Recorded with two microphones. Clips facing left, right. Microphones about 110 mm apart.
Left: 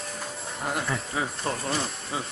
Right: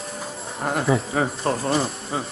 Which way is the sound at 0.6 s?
35° right (ahead or behind).